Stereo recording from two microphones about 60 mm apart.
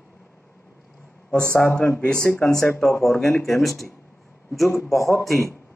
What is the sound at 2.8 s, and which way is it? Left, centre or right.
Speech, centre.